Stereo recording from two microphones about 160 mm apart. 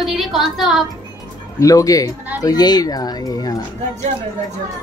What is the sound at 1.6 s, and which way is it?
Speech, 20° left (ahead or behind).